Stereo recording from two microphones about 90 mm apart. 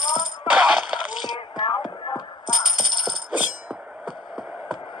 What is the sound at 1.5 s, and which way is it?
Music, 60° left (ahead or behind).